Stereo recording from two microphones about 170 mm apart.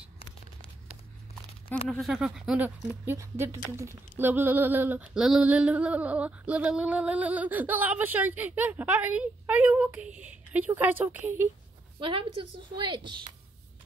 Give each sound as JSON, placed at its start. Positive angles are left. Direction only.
{"t": 1.9, "sound": "speech", "side_deg": 0}
{"t": 2.9, "sound": "a sound", "side_deg": -15}
{"t": 12.0, "sound": "a woman's voice", "side_deg": -30}